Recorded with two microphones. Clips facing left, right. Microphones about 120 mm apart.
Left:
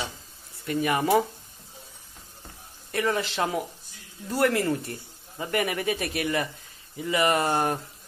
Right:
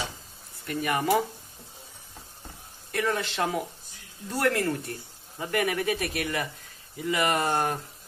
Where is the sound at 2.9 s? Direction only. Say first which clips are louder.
Left 2 dB; centre (ahead or behind).